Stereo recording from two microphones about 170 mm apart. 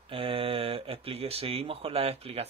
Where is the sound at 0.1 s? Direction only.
30° right (ahead or behind).